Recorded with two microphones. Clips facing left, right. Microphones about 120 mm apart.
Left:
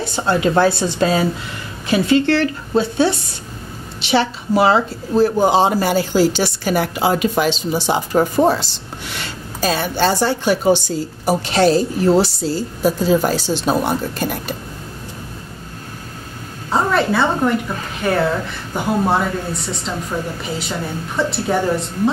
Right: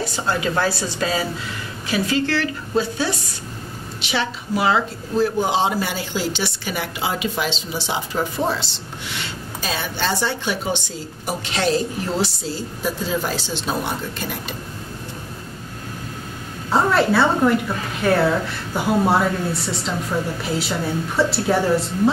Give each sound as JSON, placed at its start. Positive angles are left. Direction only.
{"t": 0.0, "sound": "a woman's voice", "side_deg": 25}
{"t": 16.7, "sound": "a woman's voice", "side_deg": 0}